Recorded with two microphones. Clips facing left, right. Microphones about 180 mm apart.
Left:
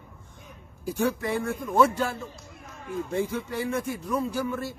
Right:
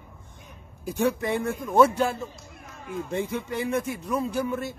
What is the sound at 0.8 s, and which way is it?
A man's voice, 20° right (ahead or behind).